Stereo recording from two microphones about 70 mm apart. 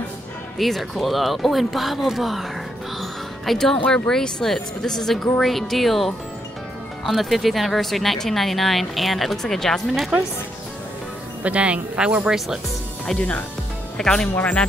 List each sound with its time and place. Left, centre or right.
0.6 s speech: centre
3.0 s music: centre
3.8 s speech: centre
4.1 s speech: centre
11.4 s speech: centre
13.9 s speech: centre